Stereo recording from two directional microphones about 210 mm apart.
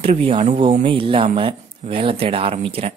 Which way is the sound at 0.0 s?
25° right (ahead or behind).